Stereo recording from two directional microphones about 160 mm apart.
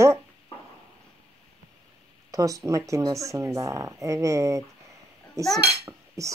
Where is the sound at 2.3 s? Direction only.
20° right (ahead or behind).